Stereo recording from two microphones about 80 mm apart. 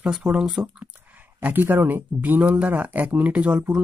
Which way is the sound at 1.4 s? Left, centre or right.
Right.